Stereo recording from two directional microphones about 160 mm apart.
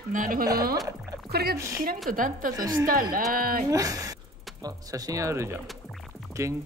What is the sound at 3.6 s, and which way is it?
Speech, 20° right (ahead or behind).